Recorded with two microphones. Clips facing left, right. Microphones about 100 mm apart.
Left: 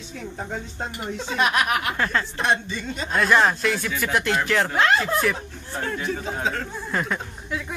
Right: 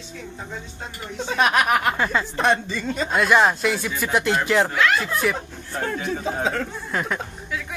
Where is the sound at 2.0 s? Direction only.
10° right (ahead or behind).